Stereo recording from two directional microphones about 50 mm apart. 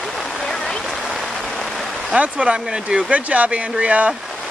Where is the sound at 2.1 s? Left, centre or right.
Right.